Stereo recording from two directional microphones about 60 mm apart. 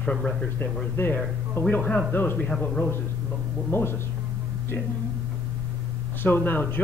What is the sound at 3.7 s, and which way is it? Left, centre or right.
Speech, left.